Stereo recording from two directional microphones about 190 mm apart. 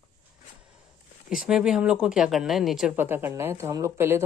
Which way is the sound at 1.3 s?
5° right (ahead or behind).